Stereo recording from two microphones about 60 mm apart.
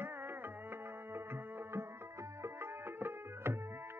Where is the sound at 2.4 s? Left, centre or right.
Right.